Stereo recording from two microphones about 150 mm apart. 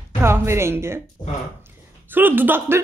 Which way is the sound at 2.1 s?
10° right (ahead or behind).